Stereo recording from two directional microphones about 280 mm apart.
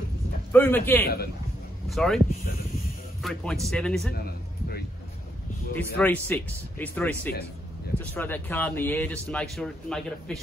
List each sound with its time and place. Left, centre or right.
0.5 s speech: centre
1.0 s speech: left
1.9 s speech: centre
4.1 s a sound: left
5.9 s speech: centre